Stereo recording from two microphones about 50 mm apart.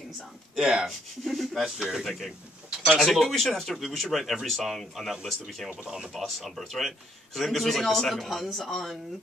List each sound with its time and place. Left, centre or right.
0.7 s speech: centre
1.2 s speech: centre
1.8 s speech: centre
2.0 s speech: centre
5.7 s speech: centre
6.1 s speech: centre